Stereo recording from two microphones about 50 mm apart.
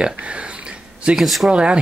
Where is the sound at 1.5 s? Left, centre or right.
Right.